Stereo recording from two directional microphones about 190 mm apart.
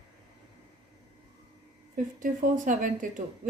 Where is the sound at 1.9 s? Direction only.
45° right (ahead or behind).